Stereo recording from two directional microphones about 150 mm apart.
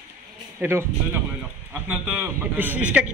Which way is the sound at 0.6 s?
15° right (ahead or behind).